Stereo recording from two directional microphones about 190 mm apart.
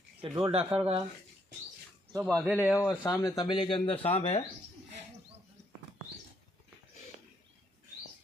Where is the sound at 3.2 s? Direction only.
20° left (ahead or behind).